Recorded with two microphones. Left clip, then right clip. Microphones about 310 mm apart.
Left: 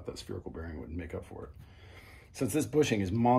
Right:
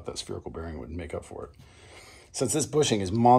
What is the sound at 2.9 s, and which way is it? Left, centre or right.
Speech, right.